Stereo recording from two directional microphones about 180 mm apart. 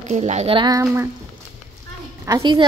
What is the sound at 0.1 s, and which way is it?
Speech, 40° right (ahead or behind).